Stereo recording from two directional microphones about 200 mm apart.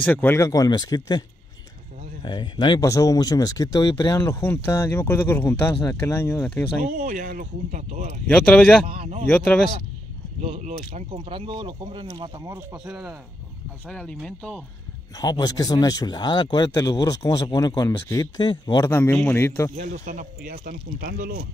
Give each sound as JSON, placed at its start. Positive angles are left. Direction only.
{"t": 0.0, "sound": "speech", "side_deg": 10}
{"t": 2.2, "sound": "speech", "side_deg": 20}
{"t": 6.8, "sound": "speech", "side_deg": -40}
{"t": 8.3, "sound": "speech", "side_deg": 5}
{"t": 8.8, "sound": "speech", "side_deg": -30}
{"t": 9.3, "sound": "speech", "side_deg": 5}
{"t": 10.4, "sound": "speech", "side_deg": -30}
{"t": 12.7, "sound": "speech", "side_deg": -5}
{"t": 15.1, "sound": "speech", "side_deg": 20}
{"t": 19.7, "sound": "speech", "side_deg": -40}